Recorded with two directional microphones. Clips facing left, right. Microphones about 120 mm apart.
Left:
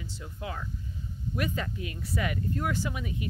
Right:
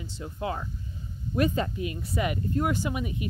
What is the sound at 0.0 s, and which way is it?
Speech, 30° right (ahead or behind).